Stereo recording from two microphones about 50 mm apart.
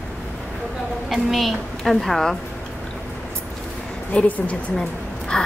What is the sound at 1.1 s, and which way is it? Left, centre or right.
A woman's voice, centre.